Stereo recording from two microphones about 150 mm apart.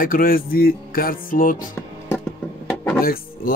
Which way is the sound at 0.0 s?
70° left (ahead or behind).